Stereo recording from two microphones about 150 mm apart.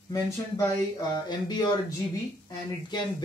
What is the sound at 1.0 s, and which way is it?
Speech, 30° left (ahead or behind).